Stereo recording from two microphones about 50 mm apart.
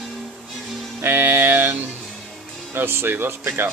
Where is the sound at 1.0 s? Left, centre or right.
Right.